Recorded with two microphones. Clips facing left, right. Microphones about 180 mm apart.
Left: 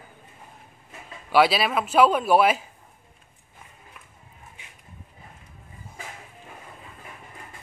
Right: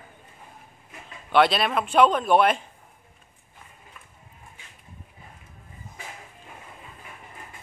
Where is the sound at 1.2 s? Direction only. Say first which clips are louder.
Left 1 dB; 5° left (ahead or behind).